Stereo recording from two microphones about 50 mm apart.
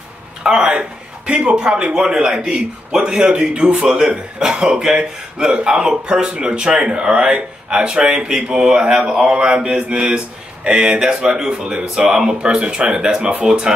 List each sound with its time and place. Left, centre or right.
0.4 s speech: centre